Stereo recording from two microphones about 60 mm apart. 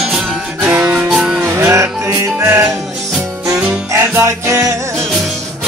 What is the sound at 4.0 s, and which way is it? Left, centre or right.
Music, right.